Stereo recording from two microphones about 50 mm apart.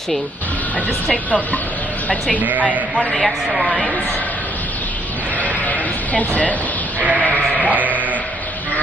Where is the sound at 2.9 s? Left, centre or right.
Left.